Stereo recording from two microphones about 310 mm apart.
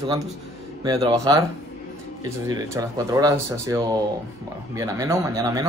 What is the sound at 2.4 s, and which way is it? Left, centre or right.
Speech, centre.